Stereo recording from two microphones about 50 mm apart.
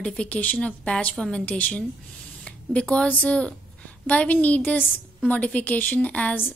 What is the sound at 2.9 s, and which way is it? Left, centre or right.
Speech, left.